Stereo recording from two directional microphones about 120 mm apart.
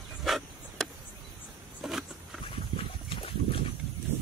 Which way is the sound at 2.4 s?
50° left (ahead or behind).